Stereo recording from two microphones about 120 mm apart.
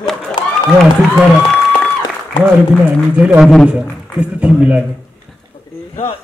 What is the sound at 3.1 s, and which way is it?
A man's voice, 10° right (ahead or behind).